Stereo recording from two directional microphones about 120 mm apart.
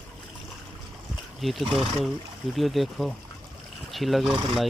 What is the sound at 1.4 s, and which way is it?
Speech, centre (ahead or behind).